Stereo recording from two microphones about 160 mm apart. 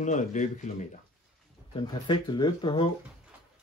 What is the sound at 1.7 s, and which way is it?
Speech, 30° left (ahead or behind).